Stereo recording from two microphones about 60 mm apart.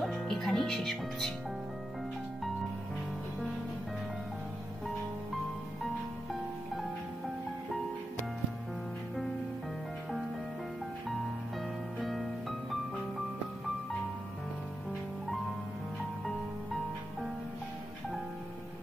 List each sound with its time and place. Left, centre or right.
0.0 s music: centre
12.0 s music: centre
16.3 s music: centre